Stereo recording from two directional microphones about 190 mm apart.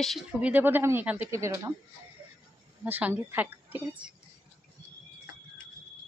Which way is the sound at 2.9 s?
10° right (ahead or behind).